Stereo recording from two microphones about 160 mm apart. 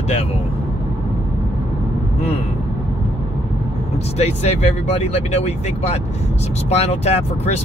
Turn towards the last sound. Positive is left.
turn(degrees=40)  # may be behind; listen again after turning